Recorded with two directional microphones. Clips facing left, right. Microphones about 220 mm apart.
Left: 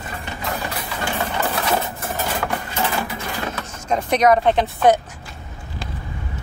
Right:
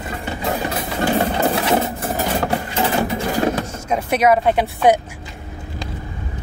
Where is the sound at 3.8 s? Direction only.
5° right (ahead or behind).